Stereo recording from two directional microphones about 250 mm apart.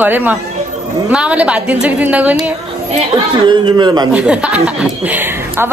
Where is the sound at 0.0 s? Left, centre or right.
Centre.